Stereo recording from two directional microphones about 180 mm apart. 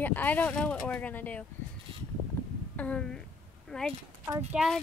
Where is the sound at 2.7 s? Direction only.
5° left (ahead or behind).